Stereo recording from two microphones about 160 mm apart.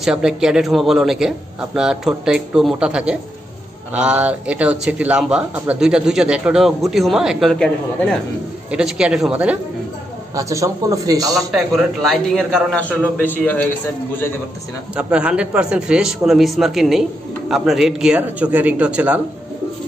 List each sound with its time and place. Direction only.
0.0 s a man's voice: 5° right (ahead or behind)
10.3 s a man's voice: 20° right (ahead or behind)
11.3 s a man's voice: centre (ahead or behind)
15.0 s a man's voice: 5° right (ahead or behind)